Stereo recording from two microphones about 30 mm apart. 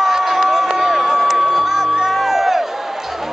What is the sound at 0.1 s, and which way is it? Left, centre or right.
Crowd, centre.